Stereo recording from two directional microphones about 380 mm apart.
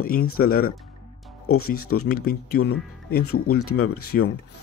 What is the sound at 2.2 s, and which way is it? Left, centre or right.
Speech, left.